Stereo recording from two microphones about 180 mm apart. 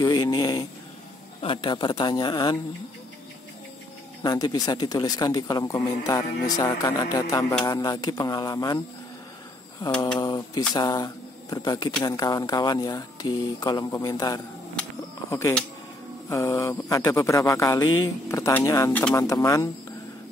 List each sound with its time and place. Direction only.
0.0 s speech: 20° left (ahead or behind)
4.2 s speech: 20° left (ahead or behind)
10.1 s speech: 20° left (ahead or behind)
16.3 s a man's voice: 15° left (ahead or behind)